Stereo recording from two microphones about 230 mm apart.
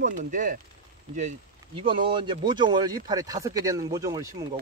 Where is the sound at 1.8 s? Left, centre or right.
Right.